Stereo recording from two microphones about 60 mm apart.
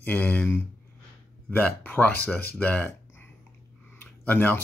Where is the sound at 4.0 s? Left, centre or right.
Left.